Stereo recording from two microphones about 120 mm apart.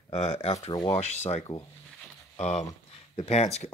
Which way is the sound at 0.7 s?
35° left (ahead or behind).